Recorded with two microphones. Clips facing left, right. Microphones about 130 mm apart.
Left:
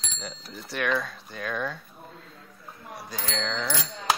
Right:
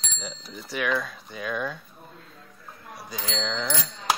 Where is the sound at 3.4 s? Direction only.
Centre (ahead or behind).